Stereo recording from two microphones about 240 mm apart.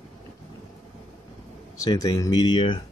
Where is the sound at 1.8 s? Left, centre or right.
Centre.